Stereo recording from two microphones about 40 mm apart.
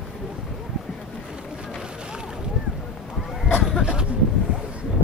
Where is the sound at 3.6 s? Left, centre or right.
Centre.